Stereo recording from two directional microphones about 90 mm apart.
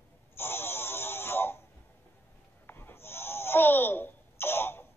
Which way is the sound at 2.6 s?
25° left (ahead or behind).